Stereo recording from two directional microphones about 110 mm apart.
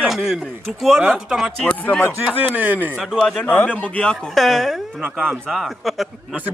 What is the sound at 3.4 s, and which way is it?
A man's voice, 15° left (ahead or behind).